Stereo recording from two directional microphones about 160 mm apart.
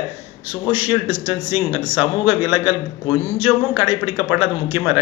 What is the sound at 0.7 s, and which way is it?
Speech, 35° left (ahead or behind).